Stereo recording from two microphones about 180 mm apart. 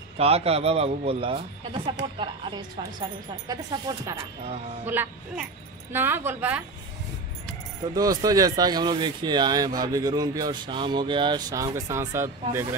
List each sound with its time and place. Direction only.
0.2 s a man's voice: 35° right (ahead or behind); by 6.6 s 10° right (ahead or behind)
7.9 s speech: 20° right (ahead or behind)